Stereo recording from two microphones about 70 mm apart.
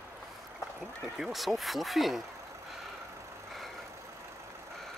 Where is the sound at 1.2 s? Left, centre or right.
Centre.